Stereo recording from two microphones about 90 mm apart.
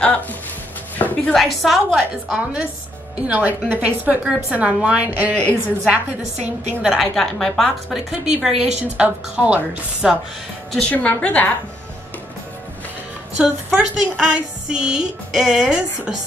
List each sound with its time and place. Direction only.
0.0 s a woman's voice: 15° left (ahead or behind)
1.3 s a woman's voice: centre (ahead or behind)
1.9 s speech: 15° right (ahead or behind)
5.3 s a woman's voice: 15° left (ahead or behind)
6.8 s speech: 5° right (ahead or behind)
7.2 s a woman's voice: 5° left (ahead or behind)
10.7 s a woman's voice: 10° left (ahead or behind)
13.4 s speech: 10° right (ahead or behind)